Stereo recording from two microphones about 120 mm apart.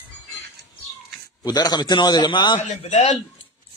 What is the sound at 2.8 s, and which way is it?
Speech, 60° left (ahead or behind).